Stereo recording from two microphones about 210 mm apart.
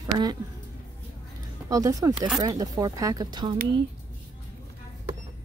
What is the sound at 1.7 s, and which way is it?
A woman's voice, 15° right (ahead or behind).